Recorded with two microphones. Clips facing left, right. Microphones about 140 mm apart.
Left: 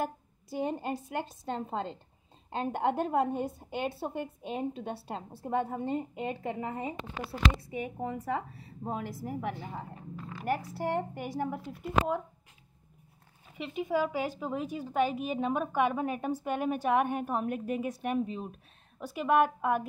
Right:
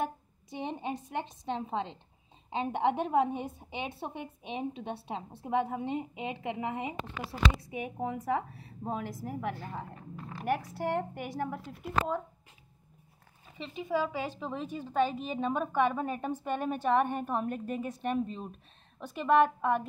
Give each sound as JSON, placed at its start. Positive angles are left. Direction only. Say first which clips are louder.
{"t": 0.0, "sound": "a woman's voice", "louder": "even", "side_deg": 5}
{"t": 6.4, "sound": "a woman's voice", "louder": "even", "side_deg": -15}
{"t": 7.7, "sound": "a woman's voice", "louder": "even", "side_deg": -5}
{"t": 10.3, "sound": "a woman's voice", "louder": "right 1 dB", "side_deg": 0}
{"t": 13.6, "sound": "a woman's voice", "louder": "left 2 dB", "side_deg": 10}